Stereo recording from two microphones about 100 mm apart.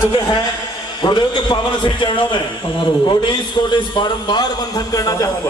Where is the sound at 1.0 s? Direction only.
50° left (ahead or behind).